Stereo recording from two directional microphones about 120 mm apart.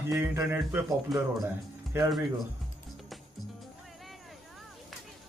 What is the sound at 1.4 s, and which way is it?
Speech, 20° right (ahead or behind).